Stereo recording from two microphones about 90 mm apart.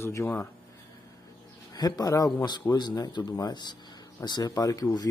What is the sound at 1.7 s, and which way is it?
Speech, 45° left (ahead or behind).